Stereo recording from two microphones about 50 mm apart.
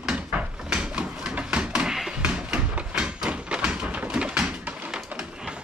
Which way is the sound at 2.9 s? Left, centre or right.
Centre.